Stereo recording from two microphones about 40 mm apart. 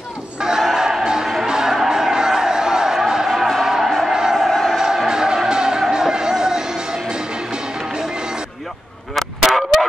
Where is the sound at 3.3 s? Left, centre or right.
Centre.